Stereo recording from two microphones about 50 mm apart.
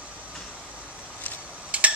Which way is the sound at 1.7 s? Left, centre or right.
Right.